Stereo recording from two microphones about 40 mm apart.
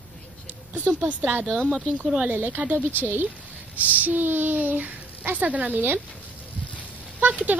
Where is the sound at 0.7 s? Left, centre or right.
Right.